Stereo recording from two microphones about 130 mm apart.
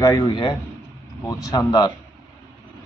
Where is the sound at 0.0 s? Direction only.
30° left (ahead or behind).